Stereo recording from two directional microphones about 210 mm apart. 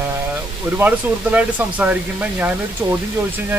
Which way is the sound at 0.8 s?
5° right (ahead or behind).